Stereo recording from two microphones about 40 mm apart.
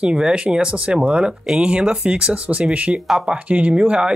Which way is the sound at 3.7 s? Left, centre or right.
Right.